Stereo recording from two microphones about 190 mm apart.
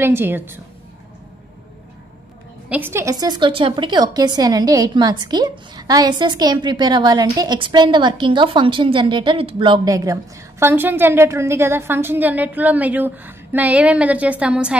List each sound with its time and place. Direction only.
0.0 s a woman's voice: 10° right (ahead or behind)
2.7 s a woman's voice: 10° right (ahead or behind)